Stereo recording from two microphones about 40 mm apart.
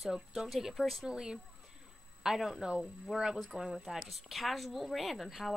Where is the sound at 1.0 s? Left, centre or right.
Centre.